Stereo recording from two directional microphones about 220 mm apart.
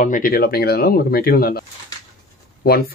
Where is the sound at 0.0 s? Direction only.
40° left (ahead or behind).